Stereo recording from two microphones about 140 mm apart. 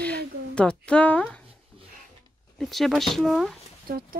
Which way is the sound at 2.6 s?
Centre (ahead or behind).